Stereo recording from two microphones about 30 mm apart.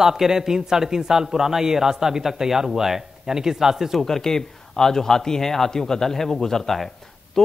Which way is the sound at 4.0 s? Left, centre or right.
Centre.